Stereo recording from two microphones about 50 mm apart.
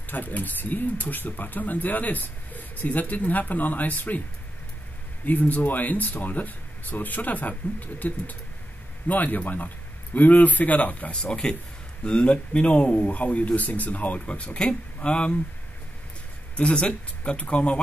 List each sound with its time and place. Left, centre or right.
0.1 s speech: left
5.2 s speech: left
11.1 s speech: centre
16.5 s speech: left